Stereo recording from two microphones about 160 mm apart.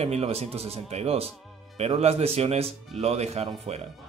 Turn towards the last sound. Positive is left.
turn(degrees=-40)  # may be behind; listen again after turning